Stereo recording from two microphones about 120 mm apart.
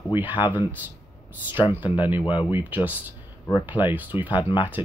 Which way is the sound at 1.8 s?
40° left (ahead or behind).